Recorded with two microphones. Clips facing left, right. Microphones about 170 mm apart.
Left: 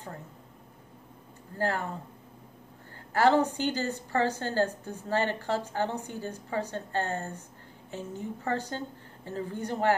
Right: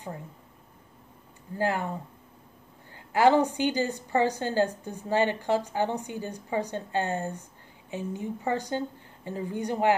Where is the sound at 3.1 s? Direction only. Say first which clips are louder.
Right 2 dB; 10° right (ahead or behind).